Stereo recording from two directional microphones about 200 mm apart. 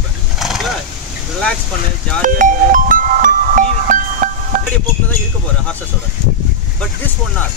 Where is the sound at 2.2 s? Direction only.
40° right (ahead or behind).